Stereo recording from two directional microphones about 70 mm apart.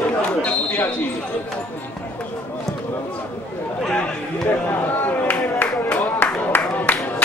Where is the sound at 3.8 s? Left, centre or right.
Centre.